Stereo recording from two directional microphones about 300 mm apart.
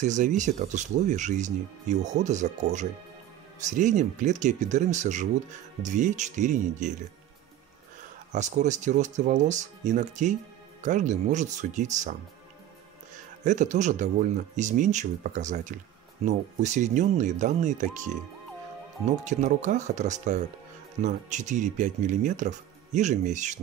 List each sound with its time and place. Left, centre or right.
0.0 s speech: right
8.3 s speech: right
13.4 s speech: right
19.2 s speech: right